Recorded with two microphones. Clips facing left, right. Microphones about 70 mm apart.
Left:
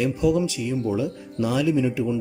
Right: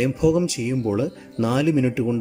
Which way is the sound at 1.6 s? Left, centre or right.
Right.